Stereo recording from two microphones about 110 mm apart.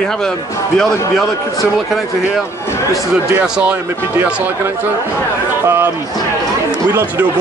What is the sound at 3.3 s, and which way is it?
Speech, 15° right (ahead or behind).